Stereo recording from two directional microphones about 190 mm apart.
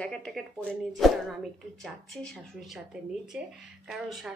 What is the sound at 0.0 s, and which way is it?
Speech, 5° left (ahead or behind).